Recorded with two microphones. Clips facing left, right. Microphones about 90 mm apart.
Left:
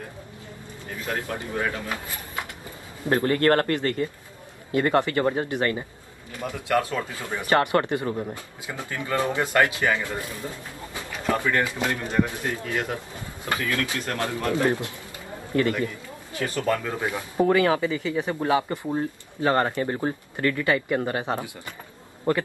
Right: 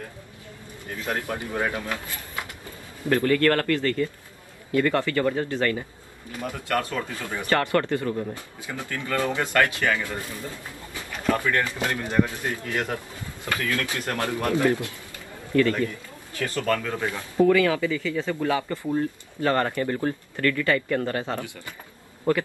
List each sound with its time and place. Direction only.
1.0 s speech: 20° right (ahead or behind)
1.9 s speech: 20° left (ahead or behind)
17.5 s speech: 30° left (ahead or behind)